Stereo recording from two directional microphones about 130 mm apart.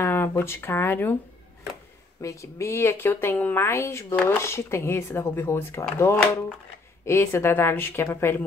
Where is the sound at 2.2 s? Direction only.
25° left (ahead or behind).